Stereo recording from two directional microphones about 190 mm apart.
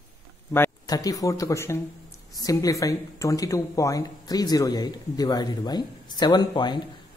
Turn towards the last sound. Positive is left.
turn(degrees=25)  # may be behind; listen again after turning